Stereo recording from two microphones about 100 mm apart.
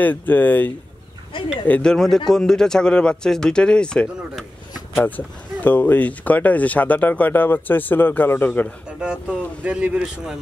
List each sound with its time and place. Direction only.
0.0 s speech: 15° left (ahead or behind)
1.7 s speech: 10° left (ahead or behind)
9.6 s speech: 10° right (ahead or behind)